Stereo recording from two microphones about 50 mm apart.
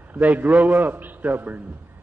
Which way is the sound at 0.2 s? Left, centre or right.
Right.